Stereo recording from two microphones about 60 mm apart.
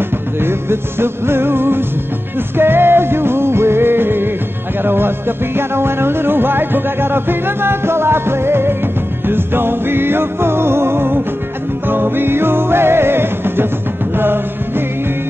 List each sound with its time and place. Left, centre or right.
0.4 s music: right